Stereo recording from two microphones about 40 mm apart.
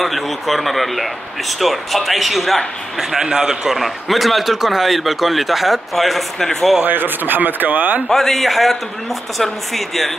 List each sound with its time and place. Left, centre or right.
0.0 s a man's voice: centre
3.7 s a man's voice: centre
6.9 s speech: right
8.1 s a man's voice: centre